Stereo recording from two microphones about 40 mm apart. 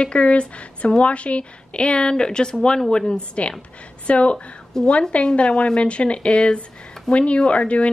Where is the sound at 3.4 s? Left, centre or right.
Left.